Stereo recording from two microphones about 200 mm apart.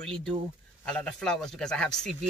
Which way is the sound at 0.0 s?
5° left (ahead or behind).